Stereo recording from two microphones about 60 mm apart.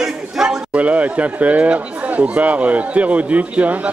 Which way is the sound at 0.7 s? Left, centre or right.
Right.